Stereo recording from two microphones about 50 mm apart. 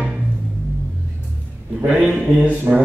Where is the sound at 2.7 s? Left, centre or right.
Right.